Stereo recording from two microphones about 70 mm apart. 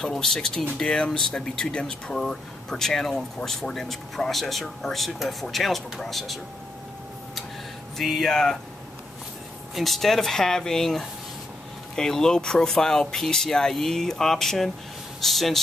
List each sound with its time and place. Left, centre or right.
0.0 s speech: centre
8.0 s speech: centre
9.8 s speech: centre